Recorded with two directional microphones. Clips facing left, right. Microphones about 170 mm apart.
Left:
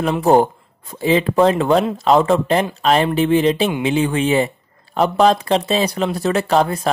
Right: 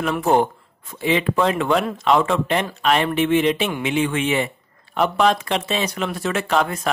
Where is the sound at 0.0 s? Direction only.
35° left (ahead or behind).